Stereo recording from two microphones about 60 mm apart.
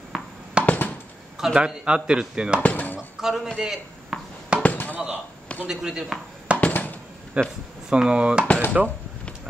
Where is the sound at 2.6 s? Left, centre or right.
Left.